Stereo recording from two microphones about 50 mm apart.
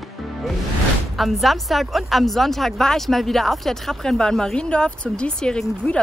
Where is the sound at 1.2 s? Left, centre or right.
Centre.